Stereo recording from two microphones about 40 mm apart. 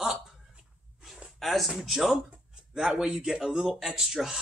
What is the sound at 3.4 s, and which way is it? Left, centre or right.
Speech, centre.